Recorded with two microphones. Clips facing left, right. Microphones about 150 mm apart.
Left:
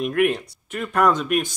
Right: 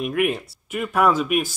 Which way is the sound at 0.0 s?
5° right (ahead or behind).